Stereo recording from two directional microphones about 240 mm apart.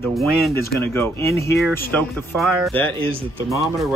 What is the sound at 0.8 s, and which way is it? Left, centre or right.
Speech, centre.